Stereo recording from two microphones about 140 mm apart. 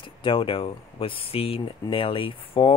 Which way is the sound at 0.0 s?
40° left (ahead or behind).